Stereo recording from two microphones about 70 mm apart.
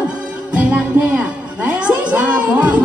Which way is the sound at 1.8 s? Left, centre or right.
Centre.